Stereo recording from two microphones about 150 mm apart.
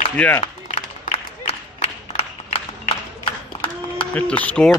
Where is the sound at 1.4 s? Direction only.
45° left (ahead or behind).